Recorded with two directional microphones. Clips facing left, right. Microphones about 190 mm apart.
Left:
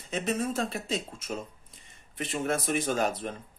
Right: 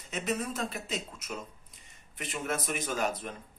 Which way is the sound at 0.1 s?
30° left (ahead or behind).